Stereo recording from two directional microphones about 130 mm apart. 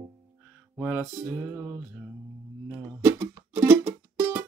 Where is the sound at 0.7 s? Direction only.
10° right (ahead or behind).